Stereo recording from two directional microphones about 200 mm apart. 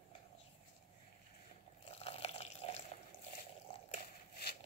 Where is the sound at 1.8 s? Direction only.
30° left (ahead or behind).